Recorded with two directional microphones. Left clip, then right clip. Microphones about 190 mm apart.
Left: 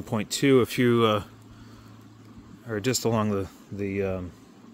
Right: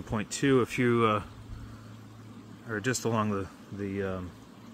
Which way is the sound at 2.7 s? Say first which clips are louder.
Left 4 dB; 45° left (ahead or behind).